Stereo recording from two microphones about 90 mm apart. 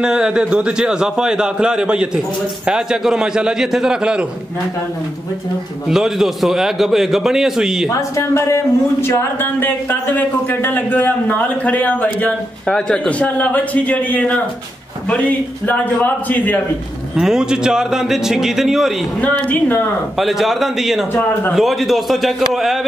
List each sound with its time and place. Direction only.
0.0 s a man's voice: 10° right (ahead or behind)
5.9 s a man's voice: 5° right (ahead or behind)
7.9 s a man's voice: 30° left (ahead or behind)
17.1 s a man's voice: 5° right (ahead or behind)
19.3 s speech: 25° left (ahead or behind)
20.2 s a man's voice: centre (ahead or behind)
21.1 s speech: 25° left (ahead or behind)
21.5 s a man's voice: centre (ahead or behind)